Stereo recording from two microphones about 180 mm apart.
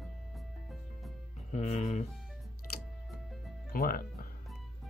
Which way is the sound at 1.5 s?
40° left (ahead or behind).